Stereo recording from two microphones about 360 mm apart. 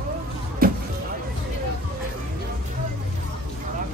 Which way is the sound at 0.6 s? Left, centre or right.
Right.